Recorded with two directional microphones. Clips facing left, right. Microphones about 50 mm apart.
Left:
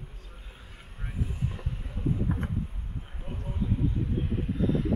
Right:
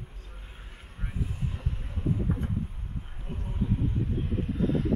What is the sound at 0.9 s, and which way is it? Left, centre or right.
Vehicle, centre.